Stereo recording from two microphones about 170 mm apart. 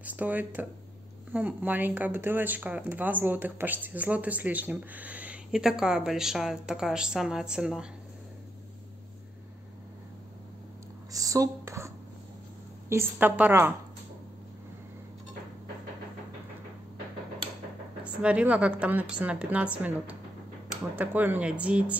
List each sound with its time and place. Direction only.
0.0 s speech: 10° right (ahead or behind)
11.1 s a sound: 20° right (ahead or behind)
12.9 s speech: 10° right (ahead or behind)
18.0 s speech: 10° right (ahead or behind)